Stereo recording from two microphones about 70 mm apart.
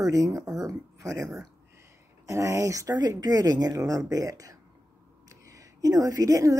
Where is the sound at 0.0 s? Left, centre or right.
Right.